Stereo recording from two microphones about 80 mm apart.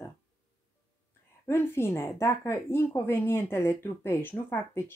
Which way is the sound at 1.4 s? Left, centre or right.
Left.